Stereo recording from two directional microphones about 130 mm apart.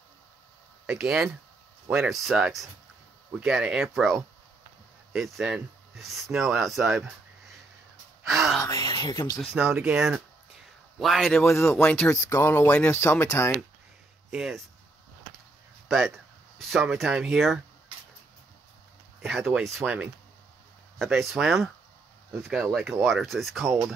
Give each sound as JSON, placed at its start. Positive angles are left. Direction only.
{"t": 0.8, "sound": "speech", "side_deg": -5}
{"t": 8.3, "sound": "speech", "side_deg": 0}
{"t": 8.6, "sound": "speech", "side_deg": 35}
{"t": 9.4, "sound": "speech", "side_deg": -5}
{"t": 11.4, "sound": "speech", "side_deg": 20}
{"t": 14.3, "sound": "speech", "side_deg": 0}
{"t": 16.5, "sound": "speech", "side_deg": 0}
{"t": 19.2, "sound": "speech", "side_deg": 0}
{"t": 21.0, "sound": "speech", "side_deg": 0}